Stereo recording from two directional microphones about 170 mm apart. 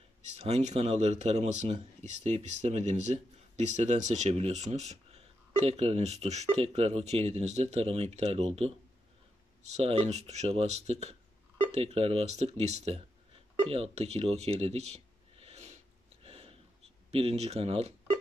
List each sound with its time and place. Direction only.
0.2 s speech: 40° right (ahead or behind)
13.6 s a sound: 35° right (ahead or behind)
17.1 s speech: 35° right (ahead or behind)